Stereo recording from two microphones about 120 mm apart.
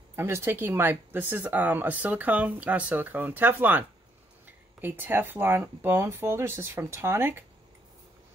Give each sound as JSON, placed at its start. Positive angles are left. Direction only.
{"t": 0.1, "sound": "speech", "side_deg": -20}